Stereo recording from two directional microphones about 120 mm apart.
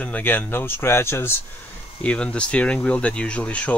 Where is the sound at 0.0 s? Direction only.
15° left (ahead or behind).